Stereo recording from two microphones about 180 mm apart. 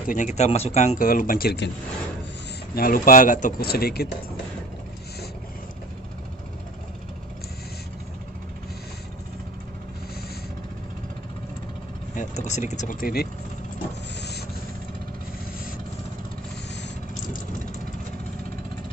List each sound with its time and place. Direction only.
0.1 s speech: 40° left (ahead or behind); by 1.7 s 60° left (ahead or behind)
2.7 s speech: 55° left (ahead or behind)
12.1 s speech: 40° left (ahead or behind)